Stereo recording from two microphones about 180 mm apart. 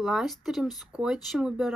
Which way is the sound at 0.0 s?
Centre (ahead or behind).